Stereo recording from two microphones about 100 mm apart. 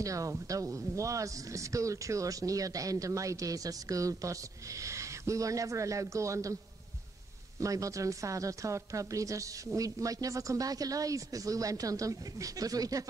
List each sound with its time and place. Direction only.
0.0 s speech: 35° right (ahead or behind)
7.6 s speech: 35° right (ahead or behind)